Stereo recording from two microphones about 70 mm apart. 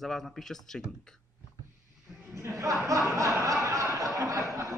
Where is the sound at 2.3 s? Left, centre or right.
Right.